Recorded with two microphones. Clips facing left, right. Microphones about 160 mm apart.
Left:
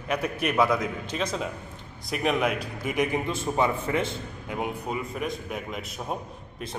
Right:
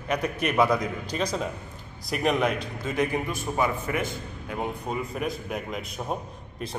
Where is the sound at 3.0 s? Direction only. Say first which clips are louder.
Even; 20° left (ahead or behind).